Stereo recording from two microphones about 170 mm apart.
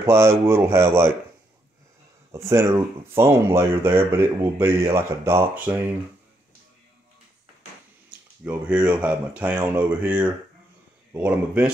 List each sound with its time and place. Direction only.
0.0 s speech: 15° right (ahead or behind)
2.3 s speech: 15° right (ahead or behind)
8.5 s speech: 5° right (ahead or behind)